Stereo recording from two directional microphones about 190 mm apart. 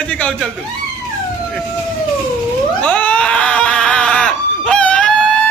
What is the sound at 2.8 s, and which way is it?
Screaming, 5° left (ahead or behind).